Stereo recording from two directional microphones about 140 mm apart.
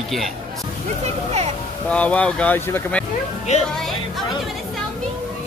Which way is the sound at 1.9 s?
10° left (ahead or behind).